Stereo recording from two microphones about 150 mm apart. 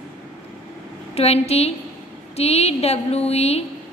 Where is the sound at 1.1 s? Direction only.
45° left (ahead or behind).